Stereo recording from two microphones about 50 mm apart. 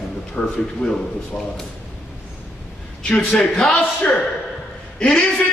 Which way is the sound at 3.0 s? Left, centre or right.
Centre.